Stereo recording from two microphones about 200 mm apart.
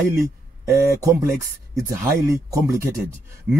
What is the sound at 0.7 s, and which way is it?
Speech, 15° right (ahead or behind).